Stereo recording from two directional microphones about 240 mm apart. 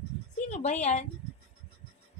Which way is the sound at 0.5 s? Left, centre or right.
Left.